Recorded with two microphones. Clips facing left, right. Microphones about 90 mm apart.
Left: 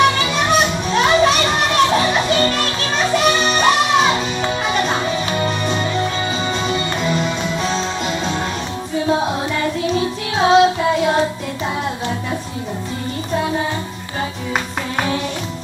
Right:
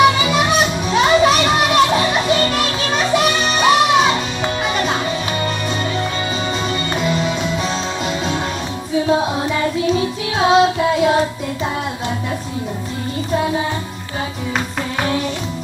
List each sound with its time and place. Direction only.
0.0 s music: 5° right (ahead or behind)